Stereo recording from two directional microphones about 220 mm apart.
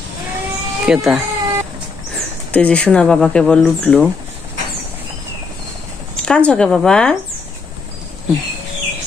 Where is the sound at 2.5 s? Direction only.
5° left (ahead or behind).